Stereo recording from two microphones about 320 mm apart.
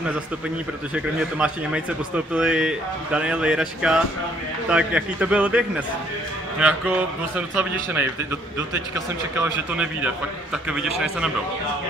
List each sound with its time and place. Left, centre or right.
0.9 s a man's voice: centre